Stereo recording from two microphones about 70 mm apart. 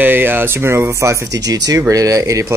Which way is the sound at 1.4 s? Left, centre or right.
Right.